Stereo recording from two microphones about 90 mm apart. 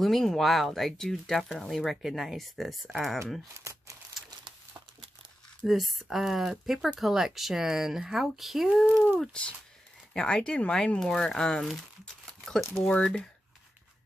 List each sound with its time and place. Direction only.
0.0 s speech: 5° left (ahead or behind)
3.5 s speech: 35° right (ahead or behind)
5.7 s speech: centre (ahead or behind)
9.0 s speech: 10° left (ahead or behind)